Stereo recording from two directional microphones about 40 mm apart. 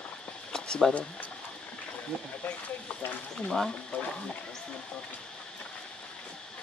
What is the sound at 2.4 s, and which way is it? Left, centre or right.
Speech, left.